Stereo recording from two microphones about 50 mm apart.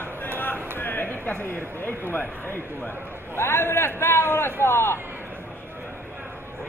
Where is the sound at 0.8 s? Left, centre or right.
Left.